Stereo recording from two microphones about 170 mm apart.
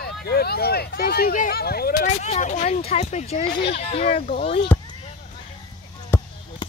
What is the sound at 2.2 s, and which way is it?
Speech, 45° left (ahead or behind).